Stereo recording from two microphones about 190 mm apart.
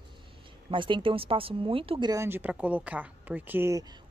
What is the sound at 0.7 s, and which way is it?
Speech, 25° right (ahead or behind).